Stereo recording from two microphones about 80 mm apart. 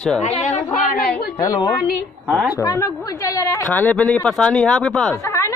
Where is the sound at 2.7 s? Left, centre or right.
Left.